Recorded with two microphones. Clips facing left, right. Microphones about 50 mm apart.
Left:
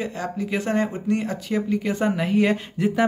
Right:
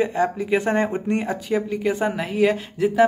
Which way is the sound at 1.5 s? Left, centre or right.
Centre.